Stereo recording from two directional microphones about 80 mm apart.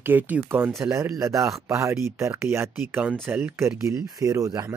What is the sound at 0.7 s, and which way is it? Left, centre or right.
Speech, right.